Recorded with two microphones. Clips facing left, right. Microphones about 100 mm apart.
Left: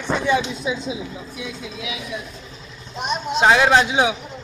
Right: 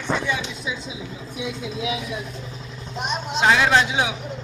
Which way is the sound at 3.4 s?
20° left (ahead or behind).